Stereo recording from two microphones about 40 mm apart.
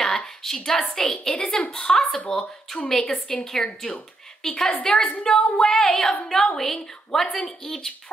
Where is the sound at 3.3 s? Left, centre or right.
Centre.